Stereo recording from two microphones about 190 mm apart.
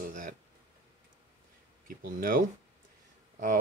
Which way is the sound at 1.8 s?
50° right (ahead or behind).